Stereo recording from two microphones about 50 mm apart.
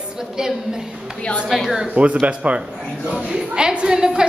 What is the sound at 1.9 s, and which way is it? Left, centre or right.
Speech, right.